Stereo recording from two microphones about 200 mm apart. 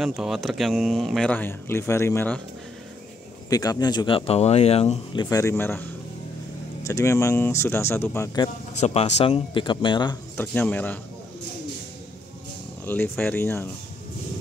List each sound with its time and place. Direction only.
0.0 s speech: centre (ahead or behind)
3.4 s speech: 20° left (ahead or behind)
8.7 s speech: 35° left (ahead or behind)
10.3 s speech: 10° left (ahead or behind)
12.8 s speech: 10° left (ahead or behind)